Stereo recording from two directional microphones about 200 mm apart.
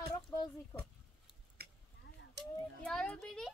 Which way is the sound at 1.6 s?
50° right (ahead or behind).